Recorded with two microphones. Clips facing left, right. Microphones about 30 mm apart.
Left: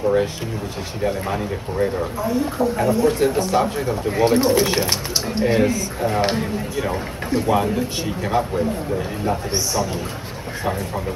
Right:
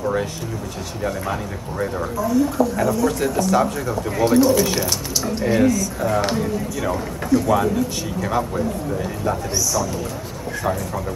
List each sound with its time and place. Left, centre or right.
2.2 s speech: left